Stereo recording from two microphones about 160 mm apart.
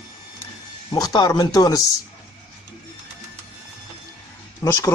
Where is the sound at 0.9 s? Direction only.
25° left (ahead or behind).